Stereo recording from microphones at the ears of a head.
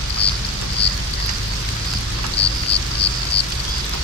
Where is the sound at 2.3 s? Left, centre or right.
Left.